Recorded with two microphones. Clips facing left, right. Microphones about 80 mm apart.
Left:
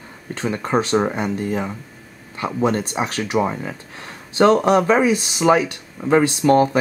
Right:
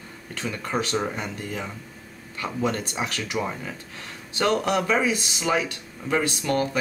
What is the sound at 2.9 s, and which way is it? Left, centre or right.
Speech, left.